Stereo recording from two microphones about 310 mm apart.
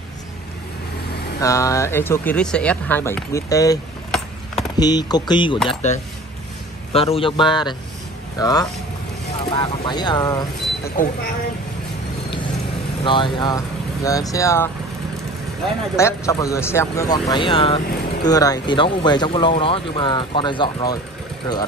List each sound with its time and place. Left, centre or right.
1.4 s speech: centre
13.0 s speech: centre